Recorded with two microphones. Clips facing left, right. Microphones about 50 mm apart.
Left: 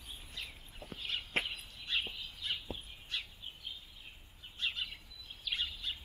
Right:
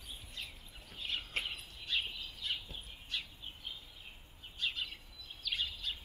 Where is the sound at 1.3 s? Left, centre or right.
Left.